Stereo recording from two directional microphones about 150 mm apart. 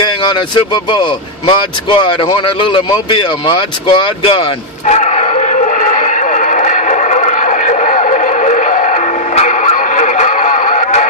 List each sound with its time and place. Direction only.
0.0 s vehicle: 30° left (ahead or behind); by 11.1 s 50° left (ahead or behind)